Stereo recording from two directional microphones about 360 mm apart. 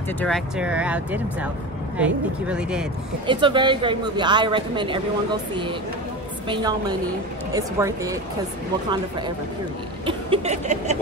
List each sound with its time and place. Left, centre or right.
0.2 s speech: centre
3.3 s a man's voice: centre
10.0 s a man's voice: centre